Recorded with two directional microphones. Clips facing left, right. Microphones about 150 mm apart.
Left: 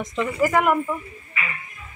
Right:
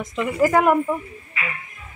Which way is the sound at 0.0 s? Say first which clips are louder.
Even; 5° right (ahead or behind).